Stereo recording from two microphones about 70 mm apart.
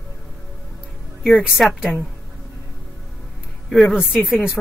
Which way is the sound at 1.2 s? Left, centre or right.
Centre.